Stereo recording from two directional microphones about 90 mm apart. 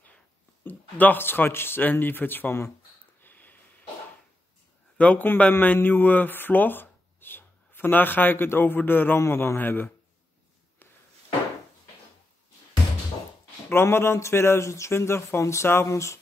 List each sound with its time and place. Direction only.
0.7 s a man's voice: 20° left (ahead or behind)
3.2 s a sound: 20° left (ahead or behind)
4.9 s a man's voice: 15° left (ahead or behind)
13.7 s speech: 25° left (ahead or behind)